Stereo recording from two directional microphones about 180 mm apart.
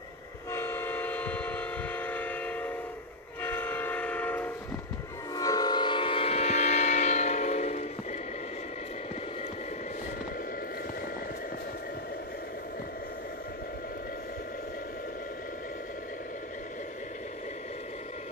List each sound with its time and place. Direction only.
0.5 s train: 10° left (ahead or behind)
5.3 s train: 20° left (ahead or behind); by 7.8 s 40° left (ahead or behind)